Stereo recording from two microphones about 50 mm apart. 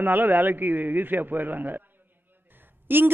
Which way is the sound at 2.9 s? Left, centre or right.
Right.